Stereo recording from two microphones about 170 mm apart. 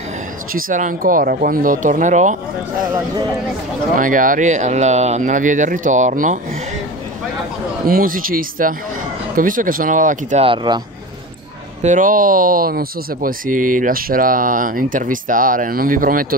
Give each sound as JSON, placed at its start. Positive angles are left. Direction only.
{"t": 0.5, "sound": "speech", "side_deg": -55}
{"t": 3.9, "sound": "speech", "side_deg": -50}
{"t": 7.9, "sound": "speech", "side_deg": -55}
{"t": 10.4, "sound": "speech", "side_deg": -30}
{"t": 11.8, "sound": "speech", "side_deg": -50}